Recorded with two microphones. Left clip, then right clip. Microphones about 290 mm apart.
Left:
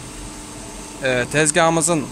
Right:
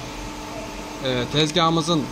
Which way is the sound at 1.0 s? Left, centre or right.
Left.